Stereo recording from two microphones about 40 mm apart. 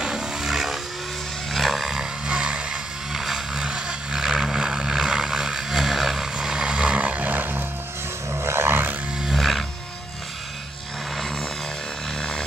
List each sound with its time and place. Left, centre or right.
0.0 s roaring cats: centre
1.5 s music: centre
2.2 s a sound: right
3.1 s vehicle: centre
3.5 s vehicle: right; by 6.2 s centre
6.3 s vehicle: right
8.3 s a sound: right
9.3 s wild animals: centre
12.2 s a sound: centre